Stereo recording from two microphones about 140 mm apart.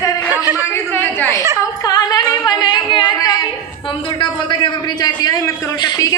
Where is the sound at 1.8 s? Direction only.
30° left (ahead or behind).